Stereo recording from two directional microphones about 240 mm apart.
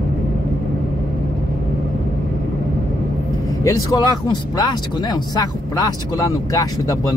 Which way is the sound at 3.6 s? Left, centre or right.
Centre.